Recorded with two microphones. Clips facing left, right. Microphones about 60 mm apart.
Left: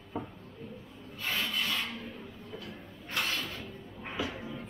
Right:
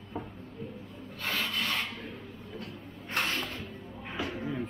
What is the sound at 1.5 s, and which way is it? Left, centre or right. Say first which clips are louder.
Rub: right 1 dB; right.